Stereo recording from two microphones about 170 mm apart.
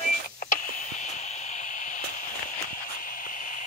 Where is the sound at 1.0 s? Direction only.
45° left (ahead or behind).